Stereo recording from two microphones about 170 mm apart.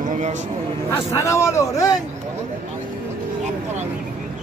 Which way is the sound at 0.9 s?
15° left (ahead or behind).